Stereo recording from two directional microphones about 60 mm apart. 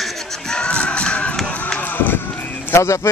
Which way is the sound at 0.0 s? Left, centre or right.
Centre.